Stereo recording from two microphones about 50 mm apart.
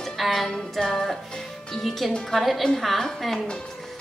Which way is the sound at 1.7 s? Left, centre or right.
Centre.